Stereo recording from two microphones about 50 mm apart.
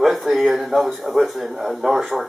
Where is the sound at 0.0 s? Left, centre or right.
Centre.